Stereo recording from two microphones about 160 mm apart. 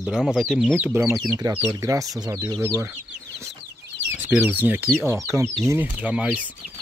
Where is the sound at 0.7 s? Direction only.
15° right (ahead or behind).